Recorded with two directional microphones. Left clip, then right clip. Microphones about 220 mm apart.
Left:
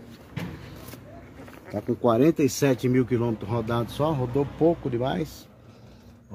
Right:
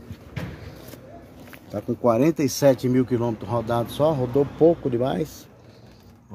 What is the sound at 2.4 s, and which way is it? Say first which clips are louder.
Speech: right 4 dB; 10° right (ahead or behind).